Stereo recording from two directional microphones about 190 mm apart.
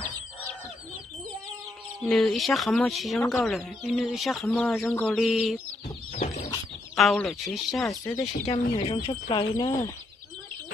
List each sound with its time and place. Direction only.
2.0 s speech: centre (ahead or behind)
6.1 s chicken: 35° left (ahead or behind)
7.0 s speech: centre (ahead or behind)
8.0 s speech: 15° left (ahead or behind)
8.5 s speech: 25° left (ahead or behind)